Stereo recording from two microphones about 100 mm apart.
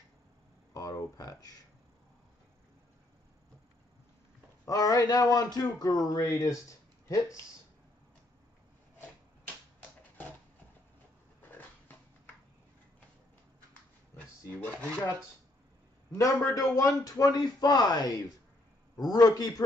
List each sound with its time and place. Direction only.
0.7 s speech: 35° left (ahead or behind)
4.6 s a man's voice: 35° left (ahead or behind)
9.8 s typewriter: 15° left (ahead or behind)
14.8 s dishes: 10° left (ahead or behind)
16.1 s a man's voice: 35° left (ahead or behind)